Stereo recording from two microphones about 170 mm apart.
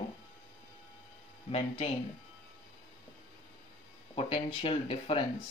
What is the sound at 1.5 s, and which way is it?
Speech, 30° left (ahead or behind).